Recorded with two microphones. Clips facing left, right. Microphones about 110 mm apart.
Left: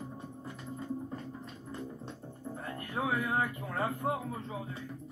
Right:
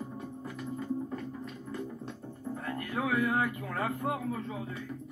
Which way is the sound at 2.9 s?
30° left (ahead or behind).